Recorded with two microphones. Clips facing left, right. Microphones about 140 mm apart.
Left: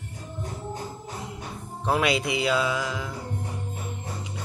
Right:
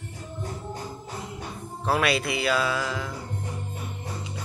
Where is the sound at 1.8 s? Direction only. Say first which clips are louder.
Even; 20° left (ahead or behind).